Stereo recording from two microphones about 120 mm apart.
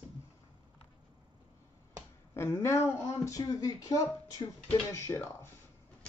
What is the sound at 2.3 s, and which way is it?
Speech, 20° left (ahead or behind).